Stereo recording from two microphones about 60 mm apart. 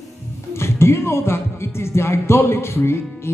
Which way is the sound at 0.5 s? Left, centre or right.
Left.